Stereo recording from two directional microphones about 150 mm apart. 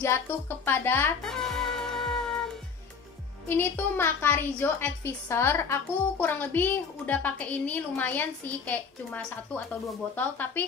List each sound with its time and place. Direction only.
0.0 s a woman's voice: 15° left (ahead or behind)
1.2 s music: 5° left (ahead or behind)
3.4 s a woman's voice: 15° left (ahead or behind)